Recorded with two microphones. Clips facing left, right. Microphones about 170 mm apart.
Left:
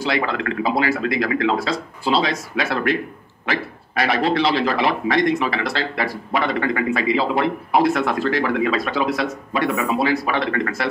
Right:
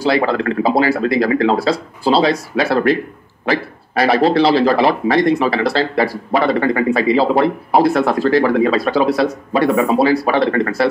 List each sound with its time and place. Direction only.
0.0 s a man's voice: 35° right (ahead or behind)